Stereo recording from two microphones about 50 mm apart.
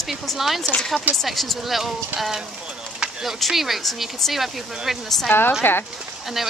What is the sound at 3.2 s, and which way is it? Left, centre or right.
A woman's voice, centre.